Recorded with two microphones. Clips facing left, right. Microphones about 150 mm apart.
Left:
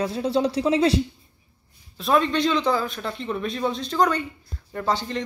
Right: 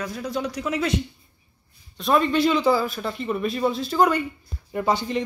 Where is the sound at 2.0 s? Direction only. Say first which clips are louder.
Right 1 dB; centre (ahead or behind).